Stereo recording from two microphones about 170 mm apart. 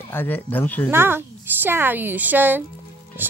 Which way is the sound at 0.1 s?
10° left (ahead or behind).